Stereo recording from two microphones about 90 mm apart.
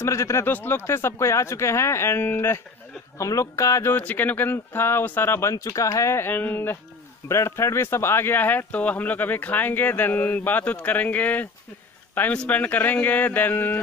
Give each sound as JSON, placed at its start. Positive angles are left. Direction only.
{"t": 0.0, "sound": "speech", "side_deg": 35}
{"t": 0.5, "sound": "speech", "side_deg": 20}
{"t": 3.2, "sound": "speech", "side_deg": 35}
{"t": 3.9, "sound": "speech", "side_deg": 20}